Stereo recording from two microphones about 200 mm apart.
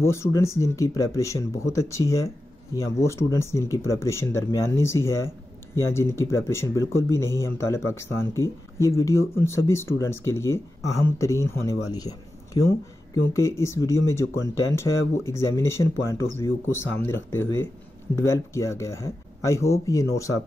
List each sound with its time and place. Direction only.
0.0 s speech: 15° left (ahead or behind)